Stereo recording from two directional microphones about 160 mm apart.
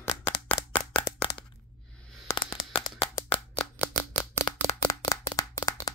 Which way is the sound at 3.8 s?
20° left (ahead or behind).